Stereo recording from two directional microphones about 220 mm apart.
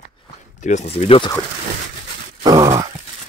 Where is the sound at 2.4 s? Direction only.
15° right (ahead or behind).